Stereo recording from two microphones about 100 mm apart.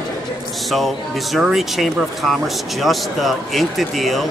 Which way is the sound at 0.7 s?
Centre (ahead or behind).